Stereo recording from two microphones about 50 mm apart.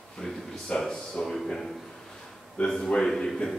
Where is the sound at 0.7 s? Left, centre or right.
Centre.